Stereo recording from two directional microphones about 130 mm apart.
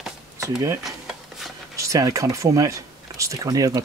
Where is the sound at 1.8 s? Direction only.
25° right (ahead or behind).